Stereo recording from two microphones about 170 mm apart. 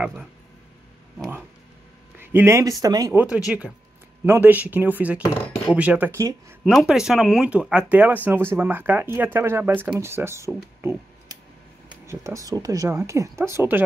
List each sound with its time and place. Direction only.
0.0 s a sound: centre (ahead or behind)
2.1 s speech: 15° right (ahead or behind)
3.2 s speech: 5° right (ahead or behind)
6.6 s speech: 5° right (ahead or behind)
10.8 s a sound: 15° right (ahead or behind)
12.1 s speech: 15° right (ahead or behind)